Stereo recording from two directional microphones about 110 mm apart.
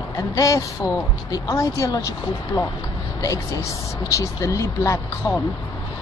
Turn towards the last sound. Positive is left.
turn(degrees=30)  # may be behind; listen again after turning